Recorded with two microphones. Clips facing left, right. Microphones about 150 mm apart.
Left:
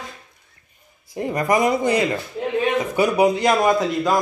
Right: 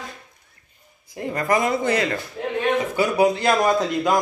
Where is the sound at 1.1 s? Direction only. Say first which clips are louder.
Left 2 dB; 20° left (ahead or behind).